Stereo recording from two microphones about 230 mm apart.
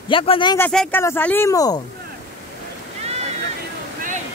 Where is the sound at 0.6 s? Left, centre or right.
Centre.